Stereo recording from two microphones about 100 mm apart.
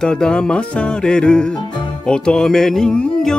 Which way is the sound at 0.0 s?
5° left (ahead or behind).